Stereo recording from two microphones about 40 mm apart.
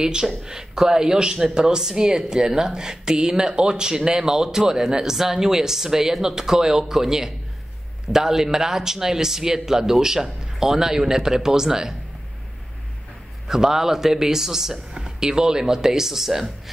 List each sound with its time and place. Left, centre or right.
0.0 s speech: centre
13.5 s speech: centre